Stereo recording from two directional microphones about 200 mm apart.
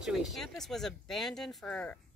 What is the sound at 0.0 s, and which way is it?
Speech, centre (ahead or behind).